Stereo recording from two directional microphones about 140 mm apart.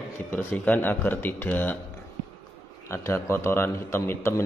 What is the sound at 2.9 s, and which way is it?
Speech, 20° left (ahead or behind).